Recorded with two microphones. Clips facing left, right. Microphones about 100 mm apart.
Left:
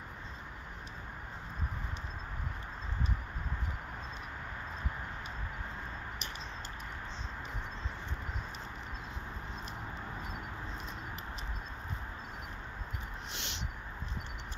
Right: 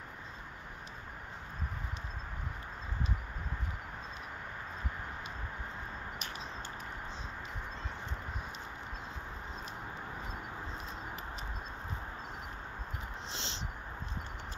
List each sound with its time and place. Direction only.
13.3 s dog: 30° right (ahead or behind)